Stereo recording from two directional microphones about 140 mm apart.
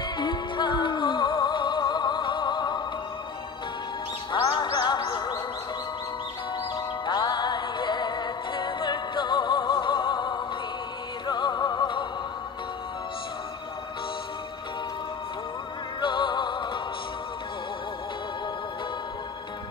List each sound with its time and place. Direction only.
0.0 s music: 35° left (ahead or behind)
4.3 s music: 30° left (ahead or behind)
6.7 s music: 30° left (ahead or behind)
16.0 s music: 35° left (ahead or behind)